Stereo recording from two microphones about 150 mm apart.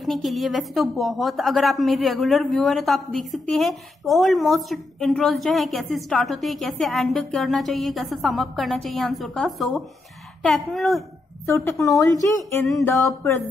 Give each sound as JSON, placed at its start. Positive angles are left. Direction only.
{"t": 0.0, "sound": "a woman's voice", "side_deg": 0}
{"t": 11.4, "sound": "a woman's voice", "side_deg": 20}
{"t": 12.8, "sound": "a sound", "side_deg": 15}